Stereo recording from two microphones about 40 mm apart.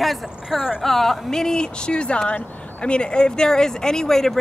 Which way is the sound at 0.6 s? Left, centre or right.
Centre.